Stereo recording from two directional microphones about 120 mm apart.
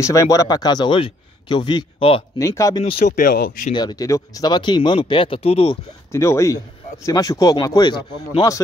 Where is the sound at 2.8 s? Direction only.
60° left (ahead or behind).